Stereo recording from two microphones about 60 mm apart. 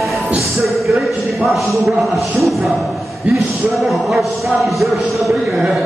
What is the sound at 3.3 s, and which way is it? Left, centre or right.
Speech, centre.